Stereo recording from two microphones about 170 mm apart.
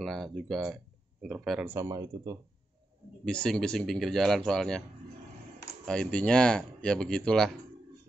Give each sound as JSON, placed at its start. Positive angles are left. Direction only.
{"t": 0.0, "sound": "speech", "side_deg": 0}
{"t": 1.7, "sound": "speech", "side_deg": -20}
{"t": 3.3, "sound": "speech", "side_deg": 5}
{"t": 5.9, "sound": "speech", "side_deg": 5}